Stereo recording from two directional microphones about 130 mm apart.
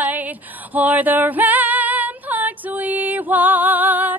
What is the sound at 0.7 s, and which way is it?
Female singing, 15° right (ahead or behind).